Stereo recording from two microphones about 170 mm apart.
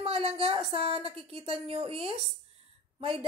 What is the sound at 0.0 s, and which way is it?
Speech, 35° right (ahead or behind).